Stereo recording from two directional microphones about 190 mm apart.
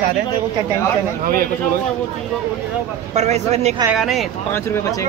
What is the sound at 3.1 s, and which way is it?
Speech, 35° right (ahead or behind).